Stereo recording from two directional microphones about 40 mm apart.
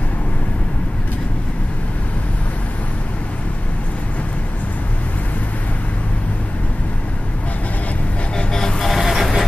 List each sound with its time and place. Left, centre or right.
8.4 s vehicle: centre
8.7 s vehicle: centre